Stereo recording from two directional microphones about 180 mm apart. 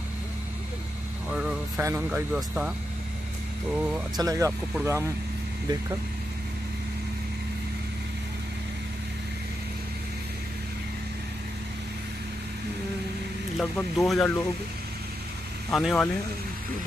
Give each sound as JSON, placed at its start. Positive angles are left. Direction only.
{"t": 1.3, "sound": "vehicle", "side_deg": -5}
{"t": 1.9, "sound": "speech", "side_deg": -10}
{"t": 3.7, "sound": "speech", "side_deg": -10}
{"t": 4.2, "sound": "speech", "side_deg": -20}
{"t": 13.6, "sound": "speech", "side_deg": 0}
{"t": 15.7, "sound": "speech", "side_deg": 0}